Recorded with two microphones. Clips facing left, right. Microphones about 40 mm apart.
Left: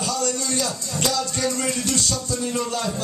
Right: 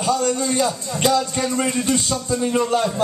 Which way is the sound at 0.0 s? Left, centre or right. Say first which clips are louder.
Right 5 dB; right.